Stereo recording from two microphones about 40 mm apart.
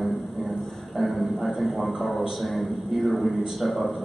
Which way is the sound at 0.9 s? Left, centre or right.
Centre.